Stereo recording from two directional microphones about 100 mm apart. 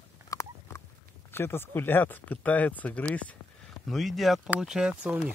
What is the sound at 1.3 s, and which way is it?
Speech, 25° left (ahead or behind).